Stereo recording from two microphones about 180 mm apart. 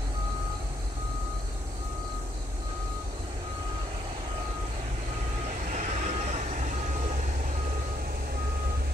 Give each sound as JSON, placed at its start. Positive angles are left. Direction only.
{"t": 5.8, "sound": "vehicle", "side_deg": -40}